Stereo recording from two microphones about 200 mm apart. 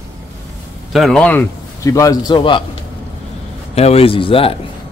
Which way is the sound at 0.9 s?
5° left (ahead or behind).